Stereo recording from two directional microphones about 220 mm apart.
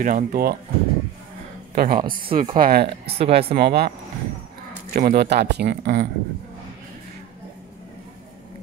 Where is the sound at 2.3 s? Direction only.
35° right (ahead or behind).